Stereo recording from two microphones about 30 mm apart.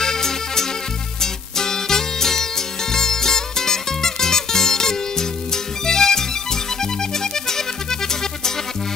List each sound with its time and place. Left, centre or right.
0.0 s music: centre